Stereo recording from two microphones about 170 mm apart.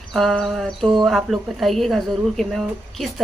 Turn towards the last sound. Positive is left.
turn(degrees=0)  # may be behind; listen again after turning